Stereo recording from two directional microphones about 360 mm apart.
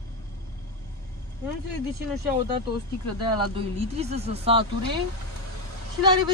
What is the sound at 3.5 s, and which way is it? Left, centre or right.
Speech, centre.